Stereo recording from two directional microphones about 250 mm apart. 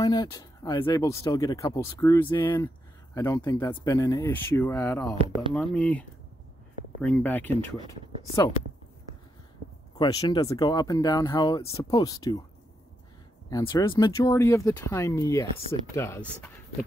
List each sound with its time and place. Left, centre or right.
0.0 s speech: centre
5.1 s speech: right
5.5 s speech: centre
9.9 s speech: centre
13.5 s speech: centre